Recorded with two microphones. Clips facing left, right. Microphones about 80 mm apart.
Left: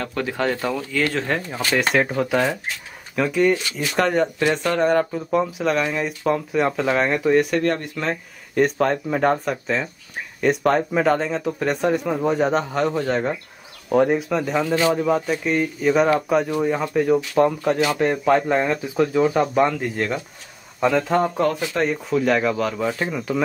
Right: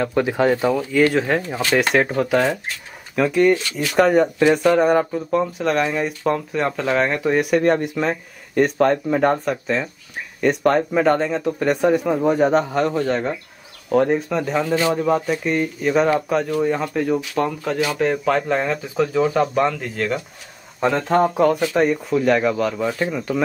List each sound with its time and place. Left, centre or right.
0.0 s speech: centre
5.3 s speech: centre
7.2 s speech: centre
20.9 s speech: centre